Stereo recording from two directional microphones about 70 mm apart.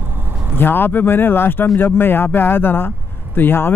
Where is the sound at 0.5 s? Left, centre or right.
Left.